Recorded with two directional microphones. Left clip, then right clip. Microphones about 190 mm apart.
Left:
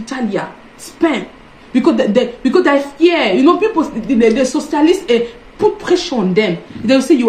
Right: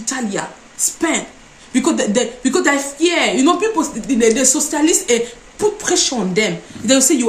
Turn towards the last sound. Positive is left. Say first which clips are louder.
# left 3 dB
turn(degrees=-25)  # may be behind; listen again after turning